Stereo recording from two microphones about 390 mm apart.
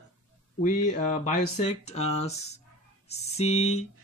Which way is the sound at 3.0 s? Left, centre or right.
Centre.